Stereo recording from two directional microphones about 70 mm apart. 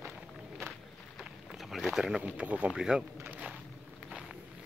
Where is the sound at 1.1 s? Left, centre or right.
Centre.